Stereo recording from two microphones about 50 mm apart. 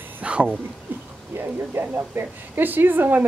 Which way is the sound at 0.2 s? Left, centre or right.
Right.